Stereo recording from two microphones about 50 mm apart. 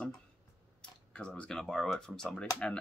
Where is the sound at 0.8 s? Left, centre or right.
Left.